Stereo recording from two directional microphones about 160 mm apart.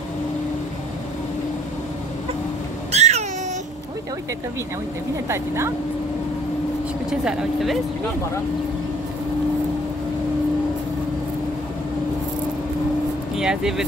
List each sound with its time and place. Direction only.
2.9 s a sound: 45° right (ahead or behind)
7.1 s speech: 5° right (ahead or behind)
13.4 s speech: 5° right (ahead or behind)